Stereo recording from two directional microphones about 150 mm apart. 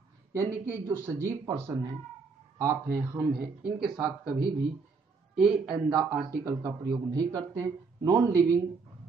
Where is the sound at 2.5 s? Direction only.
20° right (ahead or behind).